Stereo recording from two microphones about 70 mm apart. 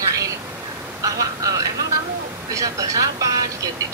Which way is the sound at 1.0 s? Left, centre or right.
Right.